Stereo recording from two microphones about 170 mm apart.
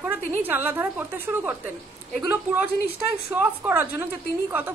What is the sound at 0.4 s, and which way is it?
A woman's voice, 10° right (ahead or behind).